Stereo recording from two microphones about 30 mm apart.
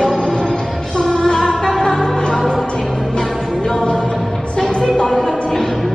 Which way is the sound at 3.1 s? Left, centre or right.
Centre.